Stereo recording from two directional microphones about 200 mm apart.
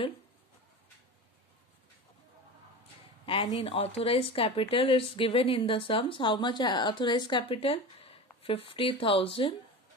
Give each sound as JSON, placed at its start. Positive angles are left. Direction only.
{"t": 3.3, "sound": "speech", "side_deg": 25}